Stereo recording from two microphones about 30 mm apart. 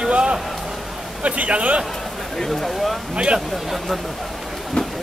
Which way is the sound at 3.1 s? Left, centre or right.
Right.